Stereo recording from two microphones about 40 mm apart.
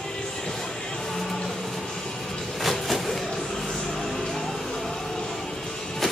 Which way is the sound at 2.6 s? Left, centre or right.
Centre.